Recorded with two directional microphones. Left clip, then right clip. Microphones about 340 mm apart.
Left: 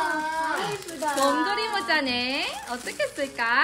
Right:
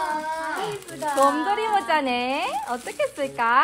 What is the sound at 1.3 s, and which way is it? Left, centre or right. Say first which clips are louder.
A woman's voice: right 3 dB; centre.